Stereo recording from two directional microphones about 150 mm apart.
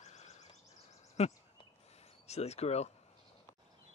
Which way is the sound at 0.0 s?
50° left (ahead or behind).